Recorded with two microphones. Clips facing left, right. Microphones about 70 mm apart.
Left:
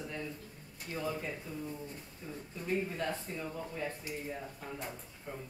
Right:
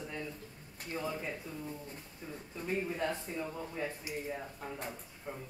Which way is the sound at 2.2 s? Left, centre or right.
Right.